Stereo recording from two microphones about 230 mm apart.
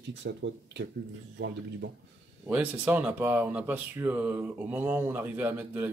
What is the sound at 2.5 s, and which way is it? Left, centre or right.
Speech, centre.